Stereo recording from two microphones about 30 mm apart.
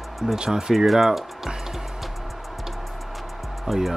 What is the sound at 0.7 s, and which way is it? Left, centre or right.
Speech, centre.